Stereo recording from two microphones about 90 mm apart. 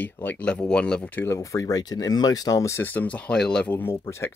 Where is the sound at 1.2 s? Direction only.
30° left (ahead or behind).